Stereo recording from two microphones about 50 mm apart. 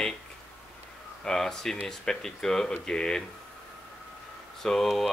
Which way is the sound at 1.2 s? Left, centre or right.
Centre.